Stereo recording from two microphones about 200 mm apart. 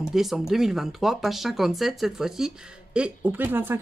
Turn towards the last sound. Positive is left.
turn(degrees=-10)  # may be behind; listen again after turning